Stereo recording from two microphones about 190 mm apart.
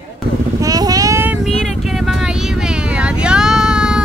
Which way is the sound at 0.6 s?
20° right (ahead or behind).